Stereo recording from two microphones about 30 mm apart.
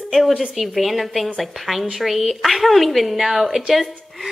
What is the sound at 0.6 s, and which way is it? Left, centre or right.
A woman's voice, centre.